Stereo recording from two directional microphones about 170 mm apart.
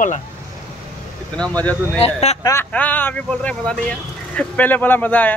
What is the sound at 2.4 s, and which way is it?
Speech, 15° left (ahead or behind).